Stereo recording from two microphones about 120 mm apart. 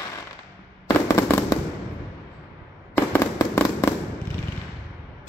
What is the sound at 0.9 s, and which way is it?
Fireworks, 30° left (ahead or behind).